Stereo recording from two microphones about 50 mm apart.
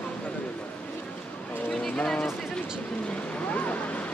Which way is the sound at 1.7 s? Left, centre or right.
Centre.